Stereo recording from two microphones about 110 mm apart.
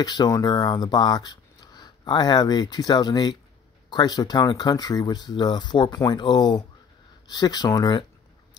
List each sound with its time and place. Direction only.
0.0 s speech: 40° left (ahead or behind)